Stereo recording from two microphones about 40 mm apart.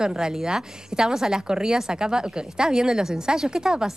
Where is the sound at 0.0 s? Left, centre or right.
Centre.